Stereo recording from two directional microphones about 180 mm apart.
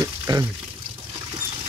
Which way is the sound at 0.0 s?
20° right (ahead or behind).